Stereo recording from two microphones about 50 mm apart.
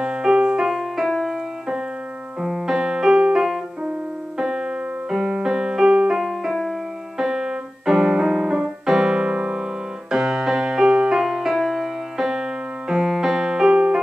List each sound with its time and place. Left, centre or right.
0.0 s music: centre
0.7 s music: centre
4.4 s keyboard: centre
5.1 s music: centre
7.2 s keyboard: centre
9.3 s music: centre